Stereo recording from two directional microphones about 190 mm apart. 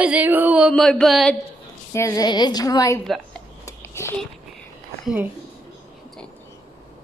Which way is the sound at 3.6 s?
15° left (ahead or behind).